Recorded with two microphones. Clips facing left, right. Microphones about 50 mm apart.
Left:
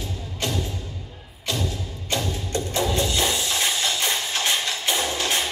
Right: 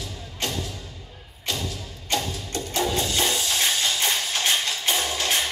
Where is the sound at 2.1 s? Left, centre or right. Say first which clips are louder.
Left 1 dB; left.